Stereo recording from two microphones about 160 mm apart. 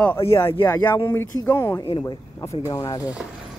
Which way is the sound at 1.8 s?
35° left (ahead or behind).